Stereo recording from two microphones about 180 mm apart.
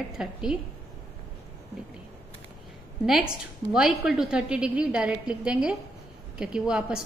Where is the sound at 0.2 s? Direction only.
5° right (ahead or behind).